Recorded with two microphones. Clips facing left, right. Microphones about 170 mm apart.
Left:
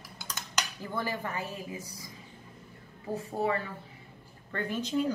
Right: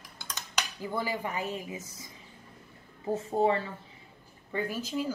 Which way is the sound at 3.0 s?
25° right (ahead or behind).